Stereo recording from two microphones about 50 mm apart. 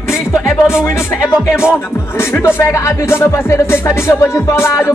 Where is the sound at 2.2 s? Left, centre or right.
Left.